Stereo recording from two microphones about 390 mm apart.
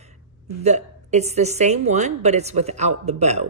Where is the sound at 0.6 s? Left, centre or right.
Centre.